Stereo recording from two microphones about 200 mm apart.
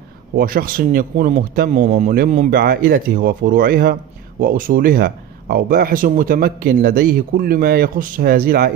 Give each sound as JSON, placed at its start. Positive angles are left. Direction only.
{"t": 0.4, "sound": "speech", "side_deg": -45}